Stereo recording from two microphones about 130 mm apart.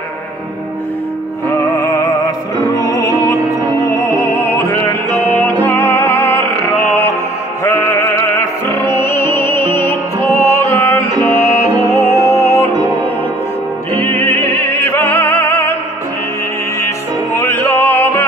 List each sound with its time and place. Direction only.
1.7 s music: 25° left (ahead or behind)
13.9 s music: 20° left (ahead or behind)
16.8 s music: 20° left (ahead or behind)